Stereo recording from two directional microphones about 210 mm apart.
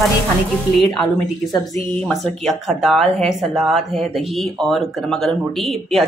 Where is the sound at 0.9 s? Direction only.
Centre (ahead or behind).